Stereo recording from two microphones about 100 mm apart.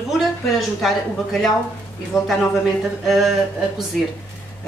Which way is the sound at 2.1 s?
35° left (ahead or behind).